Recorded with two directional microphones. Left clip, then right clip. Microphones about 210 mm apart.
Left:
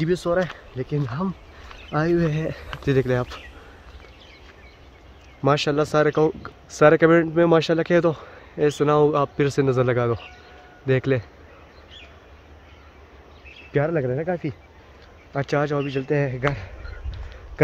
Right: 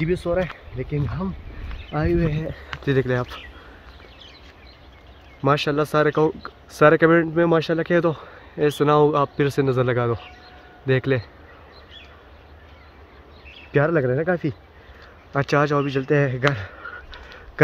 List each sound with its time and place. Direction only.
0.0 s speech: 10° left (ahead or behind)
5.4 s speech: 5° left (ahead or behind)
13.7 s a man's voice: 10° right (ahead or behind)